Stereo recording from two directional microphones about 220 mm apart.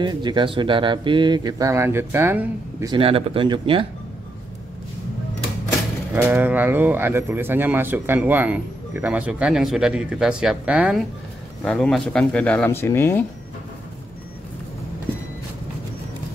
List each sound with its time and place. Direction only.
0.0 s speech: 20° right (ahead or behind)
6.1 s speech: 10° right (ahead or behind); by 13.2 s 10° left (ahead or behind)